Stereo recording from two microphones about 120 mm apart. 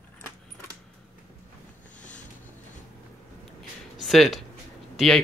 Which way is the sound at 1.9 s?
90° left.